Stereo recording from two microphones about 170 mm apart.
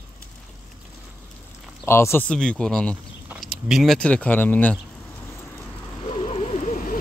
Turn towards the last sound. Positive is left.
turn(degrees=45)  # may be behind; listen again after turning